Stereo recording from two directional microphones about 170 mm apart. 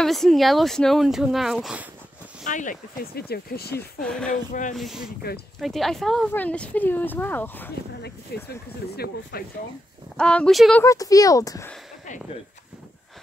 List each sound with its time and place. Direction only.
0.0 s speech: centre (ahead or behind)
2.4 s speech: 50° left (ahead or behind); by 3.7 s 65° left (ahead or behind)
3.7 s speech: 5° left (ahead or behind)
4.3 s speech: 50° left (ahead or behind)
4.7 s speech: centre (ahead or behind)
8.3 s speech: 70° left (ahead or behind)
10.1 s speech: 5° left (ahead or behind)
10.8 s speech: 20° left (ahead or behind)